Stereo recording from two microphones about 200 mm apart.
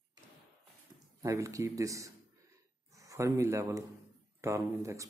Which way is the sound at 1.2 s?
15° right (ahead or behind).